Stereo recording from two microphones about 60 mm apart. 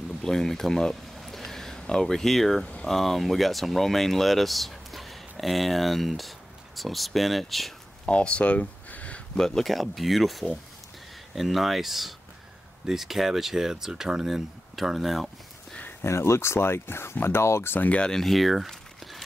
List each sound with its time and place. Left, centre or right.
0.2 s speech: centre
2.6 s speech: centre
2.9 s speech: centre
8.0 s a sound: centre
9.4 s speech: centre
16.1 s speech: left
17.7 s speech: left
18.0 s speech: centre